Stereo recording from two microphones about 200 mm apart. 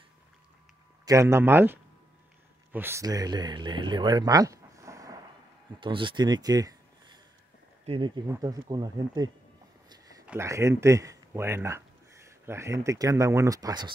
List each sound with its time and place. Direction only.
1.0 s speech: 15° right (ahead or behind)
8.3 s speech: 20° right (ahead or behind)
9.8 s a sound: 15° right (ahead or behind)
10.2 s speech: 10° right (ahead or behind)